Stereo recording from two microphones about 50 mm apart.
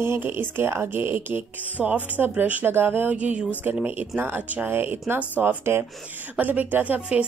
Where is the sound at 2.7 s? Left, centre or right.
Right.